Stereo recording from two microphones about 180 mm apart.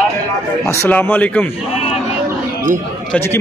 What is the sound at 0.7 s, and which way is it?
Speech, 10° left (ahead or behind).